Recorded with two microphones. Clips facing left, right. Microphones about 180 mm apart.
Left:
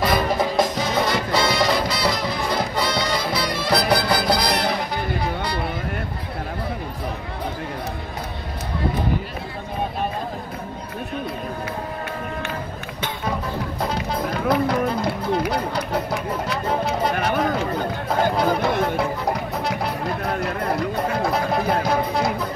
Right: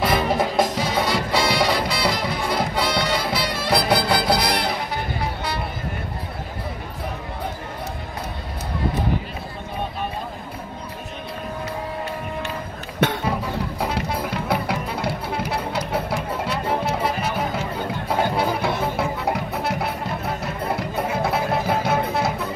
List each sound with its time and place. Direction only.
0.0 s music: 5° right (ahead or behind)
13.7 s music: 10° right (ahead or behind)
18.1 s music: 5° right (ahead or behind)
21.1 s music: 5° right (ahead or behind)